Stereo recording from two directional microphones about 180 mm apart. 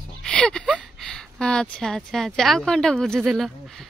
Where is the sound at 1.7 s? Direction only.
Centre (ahead or behind).